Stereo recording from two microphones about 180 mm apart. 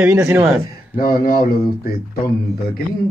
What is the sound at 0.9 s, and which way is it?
Speech, 55° left (ahead or behind).